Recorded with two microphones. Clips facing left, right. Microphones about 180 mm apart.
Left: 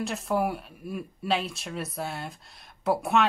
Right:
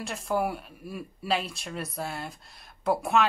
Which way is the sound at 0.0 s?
Centre (ahead or behind).